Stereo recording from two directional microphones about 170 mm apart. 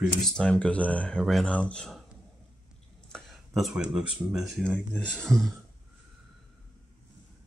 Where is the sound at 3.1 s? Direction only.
Centre (ahead or behind).